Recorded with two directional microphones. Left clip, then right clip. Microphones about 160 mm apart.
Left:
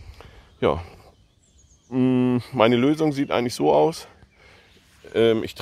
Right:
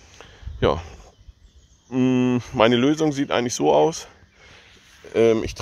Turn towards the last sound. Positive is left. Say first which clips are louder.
# right 1 dB
turn(degrees=0)  # may be behind; listen again after turning